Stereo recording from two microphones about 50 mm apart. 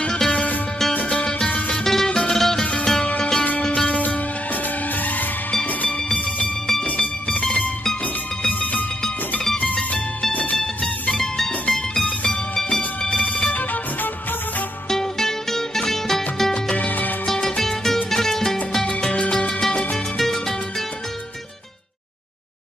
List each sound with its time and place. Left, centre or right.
0.0 s music: centre
0.3 s music: left
1.9 s music: centre
2.6 s music: centre
11.1 s music: centre
12.0 s music: left
14.9 s music: centre
16.5 s music: left
17.3 s music: centre
19.7 s music: left
20.2 s music: centre